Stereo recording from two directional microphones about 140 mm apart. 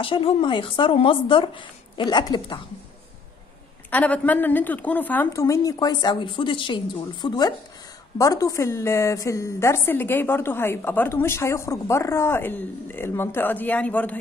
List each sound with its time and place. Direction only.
0.0 s speech: 40° left (ahead or behind)
3.9 s a woman's voice: 10° left (ahead or behind)